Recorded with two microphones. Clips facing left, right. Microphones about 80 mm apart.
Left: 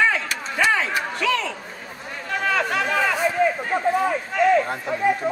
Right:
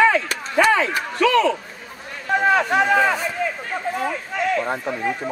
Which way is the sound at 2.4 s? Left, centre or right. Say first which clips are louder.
Right 5 dB; right.